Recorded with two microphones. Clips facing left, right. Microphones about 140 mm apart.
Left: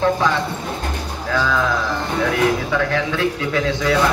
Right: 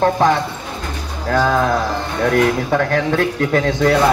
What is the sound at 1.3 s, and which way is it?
A man's voice, 45° right (ahead or behind).